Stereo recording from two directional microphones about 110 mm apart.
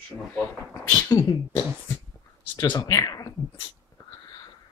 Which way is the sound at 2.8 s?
30° left (ahead or behind).